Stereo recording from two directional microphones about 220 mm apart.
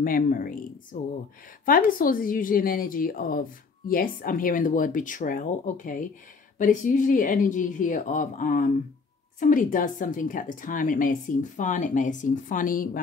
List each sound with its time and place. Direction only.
0.0 s speech: 40° left (ahead or behind)